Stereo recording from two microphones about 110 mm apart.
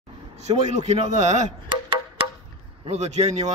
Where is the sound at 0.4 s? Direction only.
90° right.